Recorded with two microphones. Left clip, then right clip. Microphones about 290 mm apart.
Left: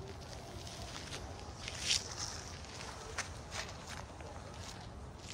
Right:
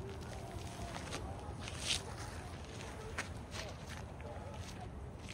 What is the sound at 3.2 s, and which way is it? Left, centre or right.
Walk, centre.